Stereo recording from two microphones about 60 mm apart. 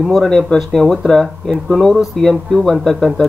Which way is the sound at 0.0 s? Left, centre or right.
Centre.